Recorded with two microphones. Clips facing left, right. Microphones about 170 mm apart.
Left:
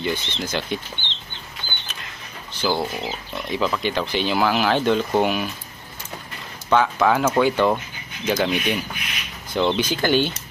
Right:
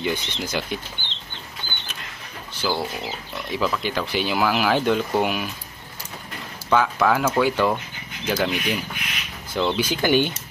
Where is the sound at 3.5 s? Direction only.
Centre (ahead or behind).